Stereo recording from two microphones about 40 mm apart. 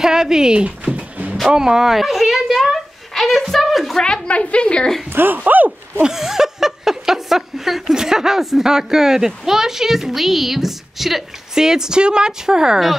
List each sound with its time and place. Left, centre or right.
0.0 s speech: centre
0.9 s music: right
1.5 s babbling: centre
4.0 s a woman's voice: left
5.1 s speech: right
5.4 s speech: right
6.0 s a sound: centre
7.9 s speech: centre